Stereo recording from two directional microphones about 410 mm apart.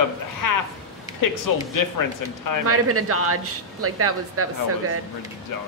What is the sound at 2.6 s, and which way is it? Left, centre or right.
Speech, right.